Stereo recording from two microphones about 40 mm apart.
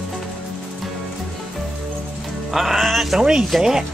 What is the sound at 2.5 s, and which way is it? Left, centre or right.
Music, centre.